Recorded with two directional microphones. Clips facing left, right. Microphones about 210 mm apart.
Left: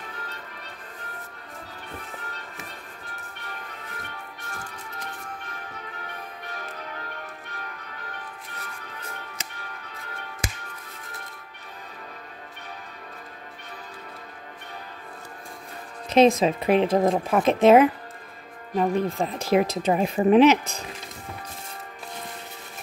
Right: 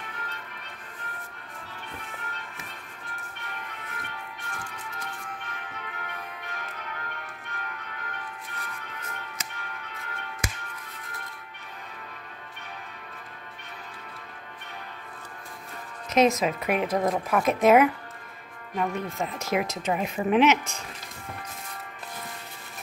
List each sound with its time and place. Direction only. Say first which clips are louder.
2.0 s music: left 2 dB; 35° left (ahead or behind)
3.4 s music: left 1 dB; 40° left (ahead or behind)
5.4 s change ringing: left 1 dB; 35° left (ahead or behind)
9.0 s music: left 1 dB; 30° left (ahead or behind)
16.1 s speech: left 4 dB; 30° left (ahead or behind)